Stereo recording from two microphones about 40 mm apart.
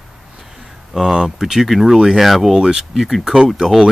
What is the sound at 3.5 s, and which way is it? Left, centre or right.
Speech, centre.